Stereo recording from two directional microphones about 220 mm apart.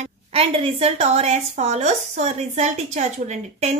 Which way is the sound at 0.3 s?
25° right (ahead or behind).